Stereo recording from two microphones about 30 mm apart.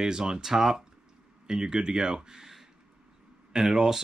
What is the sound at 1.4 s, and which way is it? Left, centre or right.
Speech, right.